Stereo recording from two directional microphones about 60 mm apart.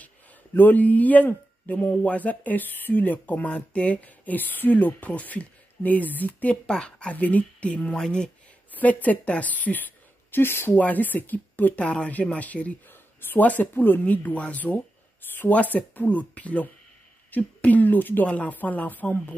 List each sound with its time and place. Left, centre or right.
0.6 s speech: left
7.9 s speech: centre
8.7 s speech: left
10.3 s speech: left
10.8 s speech: left
11.8 s speech: centre
12.9 s speech: left